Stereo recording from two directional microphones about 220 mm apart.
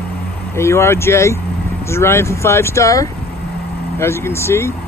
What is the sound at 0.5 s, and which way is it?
Speech, 10° left (ahead or behind).